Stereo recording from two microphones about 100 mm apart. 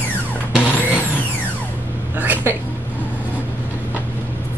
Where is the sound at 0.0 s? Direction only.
15° left (ahead or behind).